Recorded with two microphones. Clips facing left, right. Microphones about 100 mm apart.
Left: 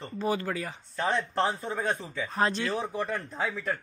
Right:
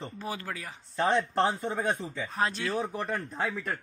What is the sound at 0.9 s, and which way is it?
Speech, 15° right (ahead or behind).